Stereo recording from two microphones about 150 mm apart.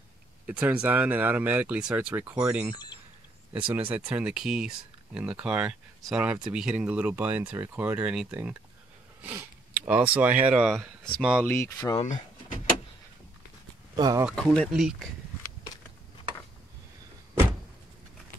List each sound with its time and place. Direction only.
0.5 s speech: 10° right (ahead or behind)
11.4 s speech: 15° left (ahead or behind)
13.9 s speech: 25° right (ahead or behind)
14.3 s speech: 5° left (ahead or behind)
14.7 s speech: 5° right (ahead or behind)